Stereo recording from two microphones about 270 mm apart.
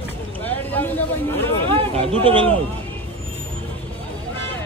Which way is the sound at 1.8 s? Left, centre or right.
Right.